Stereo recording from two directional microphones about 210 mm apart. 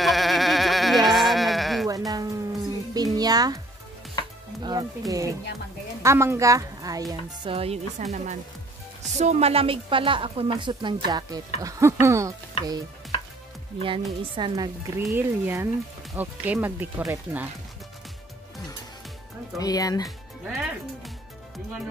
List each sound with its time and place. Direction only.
0.0 s sheep: centre (ahead or behind)
1.9 s music: 15° right (ahead or behind)
4.2 s chopping: 20° left (ahead or behind)
4.6 s a woman's voice: 15° right (ahead or behind)
13.7 s a woman's voice: 25° right (ahead or behind)
15.0 s speech: 10° right (ahead or behind)
19.6 s speech: 15° left (ahead or behind)
20.4 s speech: centre (ahead or behind)